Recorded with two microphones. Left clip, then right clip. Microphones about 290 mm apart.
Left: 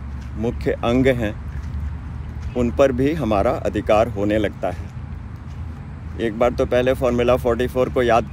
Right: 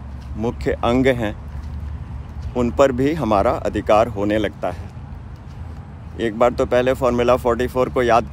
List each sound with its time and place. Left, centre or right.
0.4 s speech: centre
2.5 s speech: centre
6.1 s speech: centre